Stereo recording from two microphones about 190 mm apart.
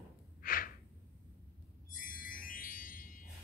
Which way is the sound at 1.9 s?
45° left (ahead or behind).